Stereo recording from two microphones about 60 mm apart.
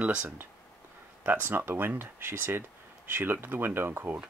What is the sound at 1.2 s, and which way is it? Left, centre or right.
Speech, right.